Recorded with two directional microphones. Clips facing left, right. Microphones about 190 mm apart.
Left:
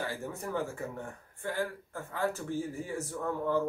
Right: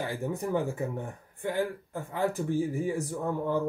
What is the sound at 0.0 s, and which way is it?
Speech, 15° right (ahead or behind).